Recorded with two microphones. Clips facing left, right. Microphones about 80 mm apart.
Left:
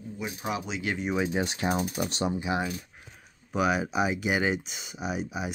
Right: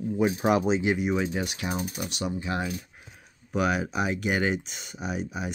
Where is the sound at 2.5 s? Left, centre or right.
Centre.